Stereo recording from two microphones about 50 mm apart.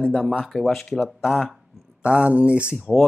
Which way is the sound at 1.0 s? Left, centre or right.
Centre.